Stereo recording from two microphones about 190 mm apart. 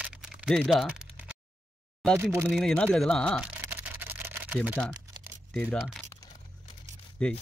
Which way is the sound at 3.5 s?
10° right (ahead or behind).